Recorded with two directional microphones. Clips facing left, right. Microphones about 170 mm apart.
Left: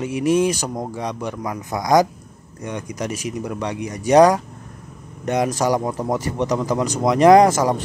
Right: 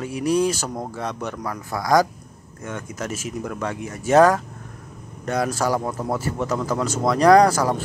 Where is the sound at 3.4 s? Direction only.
15° left (ahead or behind).